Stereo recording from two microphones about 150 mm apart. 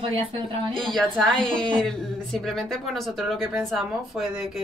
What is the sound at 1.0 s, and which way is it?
Speech, 5° left (ahead or behind).